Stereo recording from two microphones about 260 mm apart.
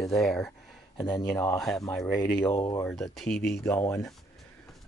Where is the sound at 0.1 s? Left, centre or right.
Centre.